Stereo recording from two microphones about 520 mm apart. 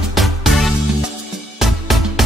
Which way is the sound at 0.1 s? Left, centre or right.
Centre.